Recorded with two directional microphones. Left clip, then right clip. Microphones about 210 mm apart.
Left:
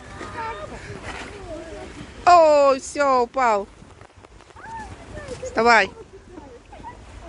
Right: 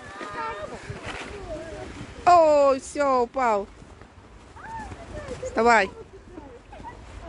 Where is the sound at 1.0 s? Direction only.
45° left (ahead or behind).